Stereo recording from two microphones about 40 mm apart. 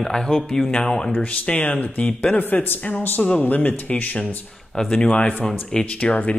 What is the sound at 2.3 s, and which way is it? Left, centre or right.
Speech, left.